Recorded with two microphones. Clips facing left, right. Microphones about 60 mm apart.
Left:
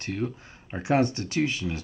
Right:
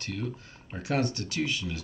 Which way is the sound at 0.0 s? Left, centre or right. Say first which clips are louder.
Left 4 dB; left.